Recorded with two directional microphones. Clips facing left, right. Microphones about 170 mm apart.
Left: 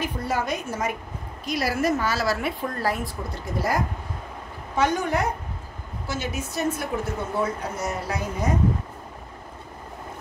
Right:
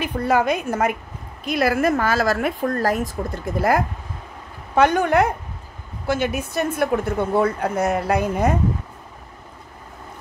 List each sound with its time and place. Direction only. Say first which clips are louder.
0.0 s a woman's voice: right 7 dB; 60° right (ahead or behind)